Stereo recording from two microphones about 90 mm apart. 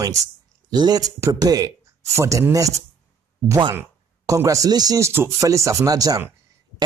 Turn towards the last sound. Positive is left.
turn(degrees=-40)  # may be behind; listen again after turning